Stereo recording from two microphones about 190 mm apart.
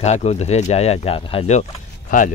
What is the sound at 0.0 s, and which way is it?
Speech, 35° left (ahead or behind).